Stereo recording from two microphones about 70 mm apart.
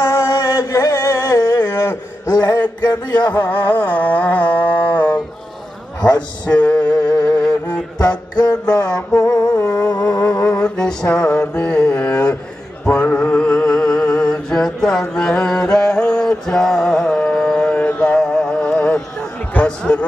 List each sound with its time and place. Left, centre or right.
0.0 s music: left
2.3 s music: left
2.6 s music: left
3.3 s a sound: left
6.4 s music: centre
6.9 s music: left
7.2 s music: centre
8.4 s music: left
9.1 s music: left
10.6 s mantra: centre
11.5 s carnatic music: left
13.1 s music: centre
19.5 s a sound: centre